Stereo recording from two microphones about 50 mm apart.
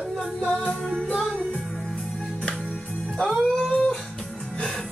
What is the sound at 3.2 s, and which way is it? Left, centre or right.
Music, centre.